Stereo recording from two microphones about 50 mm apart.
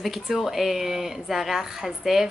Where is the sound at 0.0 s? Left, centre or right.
Centre.